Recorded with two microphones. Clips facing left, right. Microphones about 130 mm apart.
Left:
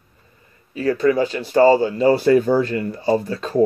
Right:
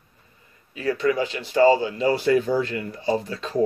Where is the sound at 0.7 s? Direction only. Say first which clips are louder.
Left 5 dB; 40° left (ahead or behind).